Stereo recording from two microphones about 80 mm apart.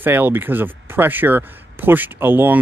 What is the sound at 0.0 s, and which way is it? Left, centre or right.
Speech, right.